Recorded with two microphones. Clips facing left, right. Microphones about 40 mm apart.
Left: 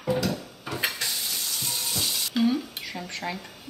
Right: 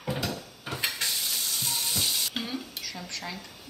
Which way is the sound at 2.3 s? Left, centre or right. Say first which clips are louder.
Left 11 dB; centre.